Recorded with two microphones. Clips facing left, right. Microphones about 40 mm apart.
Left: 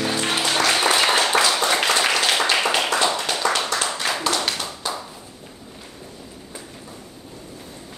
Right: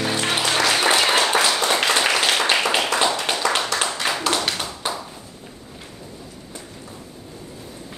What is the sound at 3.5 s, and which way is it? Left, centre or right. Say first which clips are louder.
Clapping: right 1 dB; centre.